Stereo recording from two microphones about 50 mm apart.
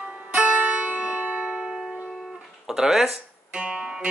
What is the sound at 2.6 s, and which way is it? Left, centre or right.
Speech, centre.